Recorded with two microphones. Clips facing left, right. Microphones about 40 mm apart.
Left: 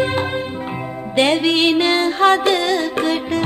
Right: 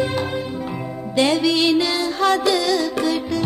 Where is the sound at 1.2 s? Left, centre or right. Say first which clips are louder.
Left 2 dB; left.